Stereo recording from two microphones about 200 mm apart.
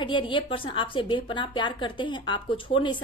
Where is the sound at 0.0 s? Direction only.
25° left (ahead or behind).